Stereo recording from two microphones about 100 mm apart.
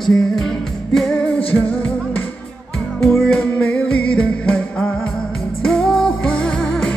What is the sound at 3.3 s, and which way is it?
Music, 15° left (ahead or behind).